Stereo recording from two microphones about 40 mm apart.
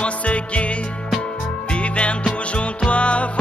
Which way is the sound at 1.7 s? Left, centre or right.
Left.